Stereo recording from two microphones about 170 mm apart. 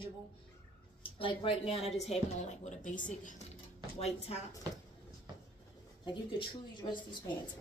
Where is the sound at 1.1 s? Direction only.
30° left (ahead or behind).